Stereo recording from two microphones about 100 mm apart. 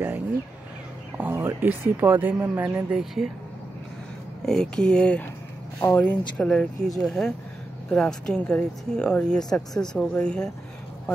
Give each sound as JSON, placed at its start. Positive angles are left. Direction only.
{"t": 1.1, "sound": "speech", "side_deg": -20}
{"t": 4.5, "sound": "speech", "side_deg": 5}
{"t": 5.8, "sound": "speech", "side_deg": 20}